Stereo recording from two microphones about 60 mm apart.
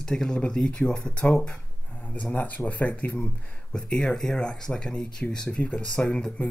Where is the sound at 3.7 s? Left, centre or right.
Centre.